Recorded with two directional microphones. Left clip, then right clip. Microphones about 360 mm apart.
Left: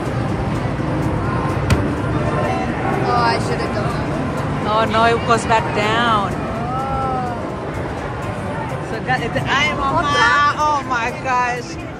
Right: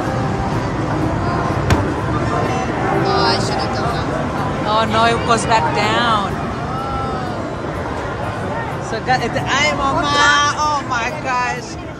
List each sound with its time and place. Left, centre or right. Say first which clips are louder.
3.2 s vehicle: left 2 dB; centre
4.6 s speech: even; centre
9.1 s speech: right 1 dB; centre